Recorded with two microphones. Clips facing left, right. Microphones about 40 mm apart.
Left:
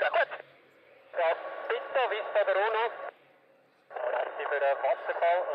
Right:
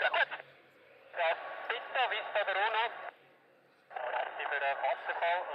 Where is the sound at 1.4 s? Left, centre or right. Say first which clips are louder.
Left 5 dB; centre.